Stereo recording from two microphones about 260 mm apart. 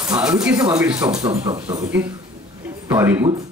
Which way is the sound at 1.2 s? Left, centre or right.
Centre.